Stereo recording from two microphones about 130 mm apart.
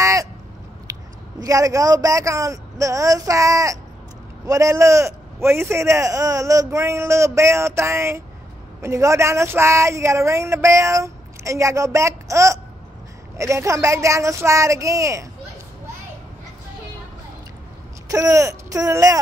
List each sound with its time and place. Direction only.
0.0 s a sound: 25° right (ahead or behind)
1.4 s speech: 25° right (ahead or behind)
18.0 s speech: 25° right (ahead or behind)